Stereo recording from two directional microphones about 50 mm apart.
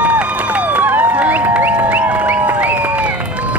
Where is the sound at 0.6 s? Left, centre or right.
Right.